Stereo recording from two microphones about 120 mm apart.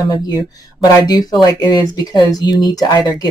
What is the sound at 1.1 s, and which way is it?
Speech, 35° left (ahead or behind).